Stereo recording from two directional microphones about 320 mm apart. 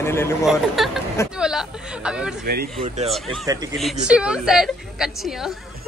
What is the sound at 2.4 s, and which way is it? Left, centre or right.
Speech, right.